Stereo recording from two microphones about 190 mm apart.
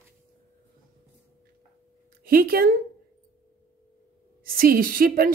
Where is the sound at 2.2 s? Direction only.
50° right (ahead or behind).